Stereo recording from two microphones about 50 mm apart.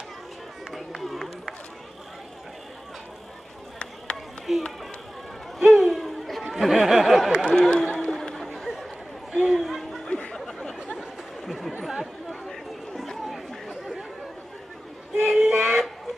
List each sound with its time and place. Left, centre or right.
0.7 s run: centre
4.5 s speech: centre
5.7 s a sound: centre
7.5 s speech: centre
7.9 s chatter: centre
10.0 s a sound: centre
10.4 s chatter: centre
10.8 s chatter: centre
11.4 s chatter: centre
15.2 s music: centre